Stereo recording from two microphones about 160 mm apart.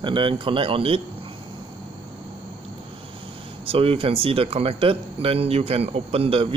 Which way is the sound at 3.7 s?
35° right (ahead or behind).